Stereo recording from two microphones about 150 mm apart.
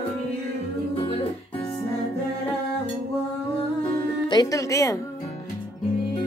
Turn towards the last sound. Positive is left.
turn(degrees=20)  # may be behind; listen again after turning